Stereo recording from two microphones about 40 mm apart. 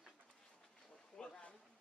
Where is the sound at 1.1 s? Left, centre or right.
Left.